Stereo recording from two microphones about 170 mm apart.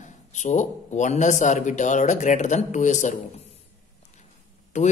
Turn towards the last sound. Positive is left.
turn(degrees=45)  # may be behind; listen again after turning